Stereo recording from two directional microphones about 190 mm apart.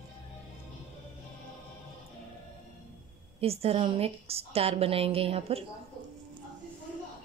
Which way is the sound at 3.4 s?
30° right (ahead or behind).